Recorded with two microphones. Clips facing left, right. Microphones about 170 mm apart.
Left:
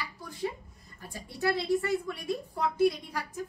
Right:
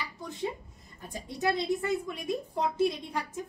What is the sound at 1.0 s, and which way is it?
A woman's voice, 20° right (ahead or behind).